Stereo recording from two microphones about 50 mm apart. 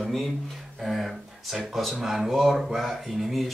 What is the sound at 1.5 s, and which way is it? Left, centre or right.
A man's voice, centre.